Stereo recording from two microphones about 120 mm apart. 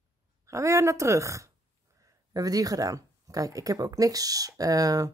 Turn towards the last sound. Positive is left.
turn(degrees=-30)  # may be behind; listen again after turning